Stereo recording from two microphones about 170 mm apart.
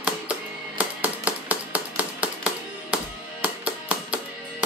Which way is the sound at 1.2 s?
10° right (ahead or behind).